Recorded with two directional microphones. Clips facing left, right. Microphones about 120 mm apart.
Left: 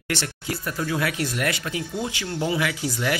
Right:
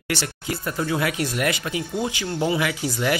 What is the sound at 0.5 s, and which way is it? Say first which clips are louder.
A man's voice: right 2 dB; 25° right (ahead or behind).